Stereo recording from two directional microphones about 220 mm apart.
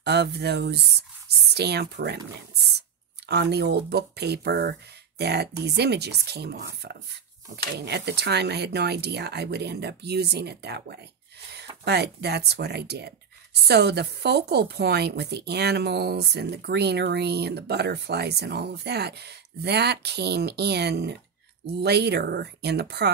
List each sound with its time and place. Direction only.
0.0 s speech: 50° right (ahead or behind)